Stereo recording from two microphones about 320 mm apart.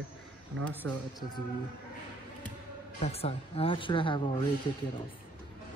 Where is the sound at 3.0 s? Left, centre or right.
Centre.